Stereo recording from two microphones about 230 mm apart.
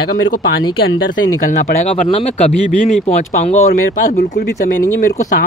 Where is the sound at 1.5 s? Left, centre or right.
Left.